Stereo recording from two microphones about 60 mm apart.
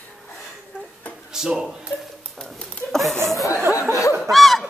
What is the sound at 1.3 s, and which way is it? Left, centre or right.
Speech, centre.